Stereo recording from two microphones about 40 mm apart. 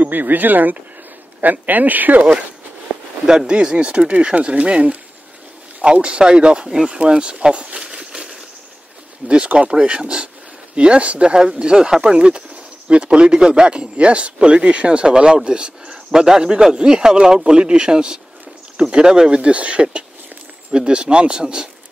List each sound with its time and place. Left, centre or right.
0.0 s speech: right
3.3 s speech: right